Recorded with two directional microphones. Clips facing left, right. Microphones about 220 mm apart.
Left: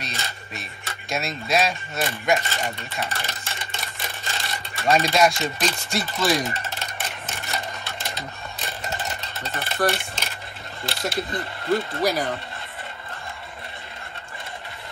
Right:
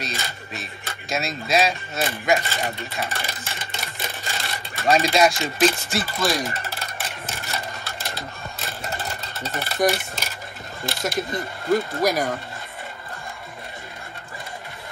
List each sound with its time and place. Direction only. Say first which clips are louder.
0.0 s speech: right 3 dB; centre (ahead or behind)
7.0 s cash register: right 1 dB; centre (ahead or behind)
9.4 s speech: right 2 dB; centre (ahead or behind)
9.8 s coin: right 3 dB; centre (ahead or behind)
10.9 s speech: right 1 dB; 45° right (ahead or behind)
11.7 s speech: right 2 dB; centre (ahead or behind)